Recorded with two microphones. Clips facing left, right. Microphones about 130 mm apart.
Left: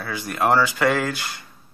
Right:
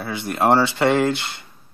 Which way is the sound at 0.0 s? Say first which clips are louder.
Right 2 dB; 25° right (ahead or behind).